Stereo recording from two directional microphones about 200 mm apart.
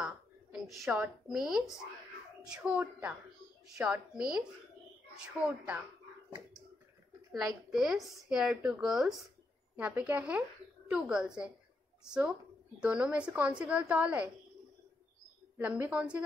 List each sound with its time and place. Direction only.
0.0 s a sound: centre (ahead or behind)
0.8 s a woman's voice: 5° right (ahead or behind)
7.7 s a woman's voice: centre (ahead or behind)
15.5 s a woman's voice: 10° right (ahead or behind)